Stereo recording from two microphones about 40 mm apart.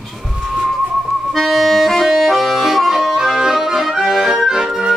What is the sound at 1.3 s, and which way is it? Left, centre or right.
Accordion, centre.